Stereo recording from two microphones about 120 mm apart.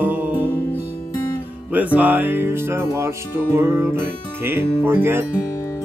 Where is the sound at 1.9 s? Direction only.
15° right (ahead or behind).